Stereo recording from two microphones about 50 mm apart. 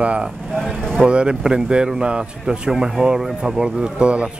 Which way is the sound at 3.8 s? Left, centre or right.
Right.